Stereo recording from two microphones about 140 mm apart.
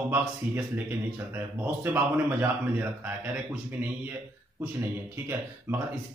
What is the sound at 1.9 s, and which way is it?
Speech, 15° right (ahead or behind).